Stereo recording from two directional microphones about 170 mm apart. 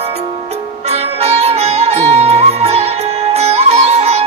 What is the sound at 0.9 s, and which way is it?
Music, 40° right (ahead or behind).